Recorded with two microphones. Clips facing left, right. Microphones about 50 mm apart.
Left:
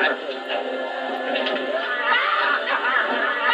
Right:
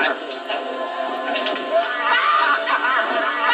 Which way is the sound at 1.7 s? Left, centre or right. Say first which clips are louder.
Right 5 dB; centre.